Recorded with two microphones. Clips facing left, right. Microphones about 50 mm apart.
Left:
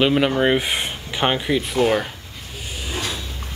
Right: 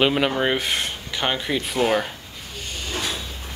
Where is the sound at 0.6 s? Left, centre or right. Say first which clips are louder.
Left 1 dB; centre.